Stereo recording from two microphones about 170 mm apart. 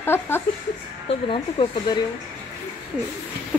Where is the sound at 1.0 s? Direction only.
35° left (ahead or behind).